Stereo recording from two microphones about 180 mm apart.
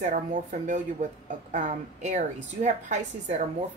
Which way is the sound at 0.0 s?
45° right (ahead or behind).